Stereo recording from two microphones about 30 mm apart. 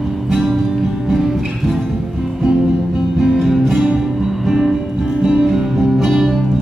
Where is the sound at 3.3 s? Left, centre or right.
Centre.